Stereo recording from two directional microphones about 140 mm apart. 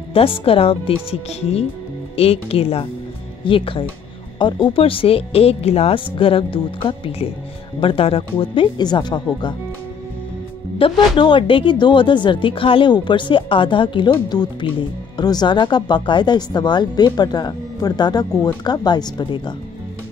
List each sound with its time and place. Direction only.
0.1 s speech: 45° left (ahead or behind)
10.8 s speech: 35° left (ahead or behind)